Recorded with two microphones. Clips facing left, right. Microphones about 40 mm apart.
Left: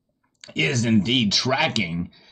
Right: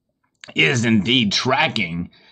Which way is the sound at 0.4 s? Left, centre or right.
Right.